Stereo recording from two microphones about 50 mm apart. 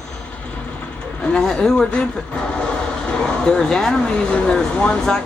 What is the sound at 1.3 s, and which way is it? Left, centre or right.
Speech, centre.